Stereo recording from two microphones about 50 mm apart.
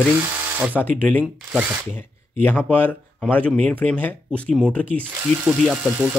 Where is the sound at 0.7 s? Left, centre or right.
Left.